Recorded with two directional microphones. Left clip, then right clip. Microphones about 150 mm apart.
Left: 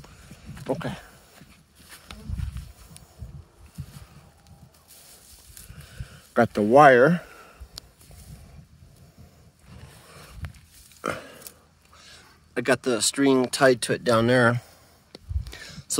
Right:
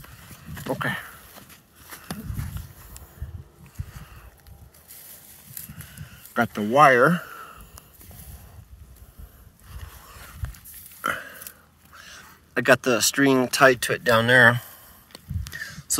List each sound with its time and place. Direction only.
0.7 s speech: 25° left (ahead or behind)
6.3 s a sound: 45° left (ahead or behind); by 7.8 s 15° left (ahead or behind)
11.0 s burping: 40° left (ahead or behind)
11.9 s a sound: 15° left (ahead or behind)
12.2 s speech: 5° left (ahead or behind); by 14.7 s 25° left (ahead or behind)
15.5 s whispering: 35° left (ahead or behind)